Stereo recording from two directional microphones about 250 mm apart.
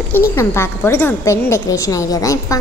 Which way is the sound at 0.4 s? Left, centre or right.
Centre.